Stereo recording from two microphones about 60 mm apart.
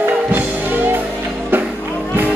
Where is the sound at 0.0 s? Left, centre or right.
Right.